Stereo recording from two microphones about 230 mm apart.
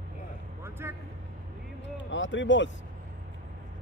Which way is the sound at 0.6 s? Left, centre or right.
Centre.